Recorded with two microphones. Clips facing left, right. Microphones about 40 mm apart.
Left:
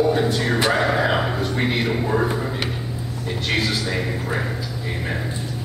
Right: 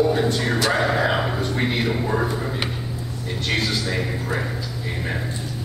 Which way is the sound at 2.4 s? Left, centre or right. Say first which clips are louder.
Left 1 dB; centre.